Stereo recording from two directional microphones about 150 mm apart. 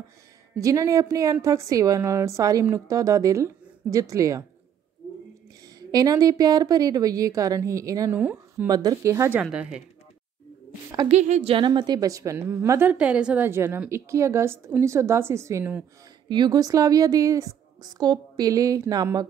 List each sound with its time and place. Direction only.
0.6 s a woman's voice: 20° right (ahead or behind)
5.8 s a woman's voice: 25° right (ahead or behind)
8.2 s speech: 10° right (ahead or behind)
8.6 s a woman's voice: 25° right (ahead or behind)
9.4 s speech: 5° right (ahead or behind)
11.1 s a woman's voice: 50° right (ahead or behind); by 12.9 s 15° right (ahead or behind)
12.9 s a woman's voice: 5° right (ahead or behind)
16.3 s a woman's voice: 30° right (ahead or behind)